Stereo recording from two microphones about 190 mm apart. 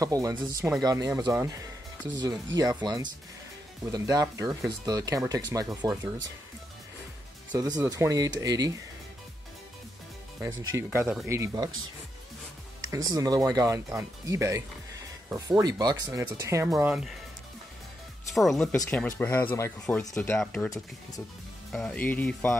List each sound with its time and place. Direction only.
0.0 s speech: 20° right (ahead or behind)
7.5 s speech: 15° right (ahead or behind)
10.5 s speech: 90° right
11.2 s speech: 15° right (ahead or behind)
12.9 s speech: 20° right (ahead or behind)
18.3 s speech: centre (ahead or behind)
21.7 s speech: 5° left (ahead or behind)